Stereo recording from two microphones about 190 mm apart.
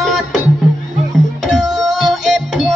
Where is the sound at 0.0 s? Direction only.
Centre (ahead or behind).